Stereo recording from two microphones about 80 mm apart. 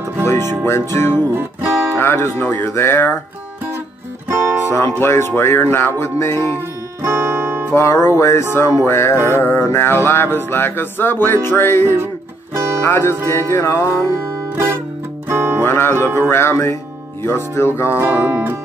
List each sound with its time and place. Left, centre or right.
0.2 s music: left
0.7 s speech: left
2.0 s music: left
4.3 s music: right
4.6 s speech: left
7.0 s music: right
7.7 s speech: left
9.3 s music: left
12.5 s music: right
12.8 s speech: left
14.1 s music: right
15.6 s speech: left
17.9 s speech: right